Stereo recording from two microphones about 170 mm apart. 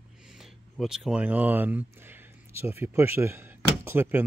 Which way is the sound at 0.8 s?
5° right (ahead or behind).